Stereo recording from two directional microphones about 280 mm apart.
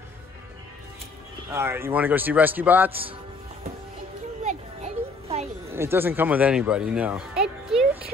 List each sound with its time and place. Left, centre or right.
1.5 s a man's voice: centre
4.5 s children playing: right
5.7 s speech: centre